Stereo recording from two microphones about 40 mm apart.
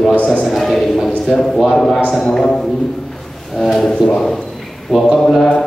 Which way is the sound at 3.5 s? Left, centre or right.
Centre.